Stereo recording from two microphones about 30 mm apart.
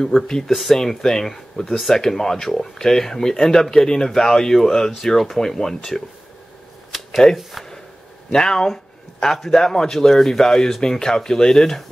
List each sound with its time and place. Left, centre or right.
0.5 s speech: centre
0.7 s speech: centre
6.9 s shuffling cards: centre
8.3 s speech: centre